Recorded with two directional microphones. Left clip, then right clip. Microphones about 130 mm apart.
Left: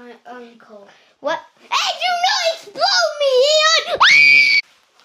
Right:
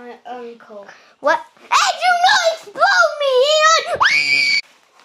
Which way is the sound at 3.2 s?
40° left (ahead or behind).